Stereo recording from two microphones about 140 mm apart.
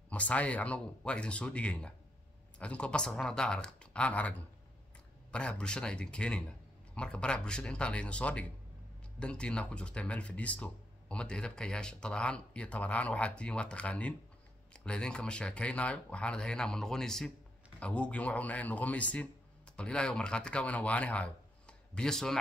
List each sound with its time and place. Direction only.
0.1 s speech: 10° left (ahead or behind)